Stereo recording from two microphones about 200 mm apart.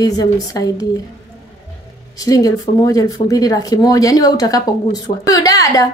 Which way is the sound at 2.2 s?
15° left (ahead or behind).